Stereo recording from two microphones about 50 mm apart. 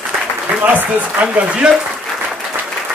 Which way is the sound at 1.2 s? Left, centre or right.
Right.